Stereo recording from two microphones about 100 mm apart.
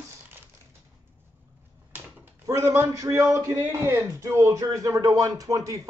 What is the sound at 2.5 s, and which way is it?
Speech, 30° right (ahead or behind).